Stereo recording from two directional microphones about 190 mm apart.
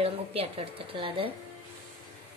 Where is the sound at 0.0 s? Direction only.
30° right (ahead or behind).